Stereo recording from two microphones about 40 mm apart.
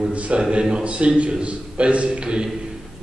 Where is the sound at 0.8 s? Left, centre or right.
Right.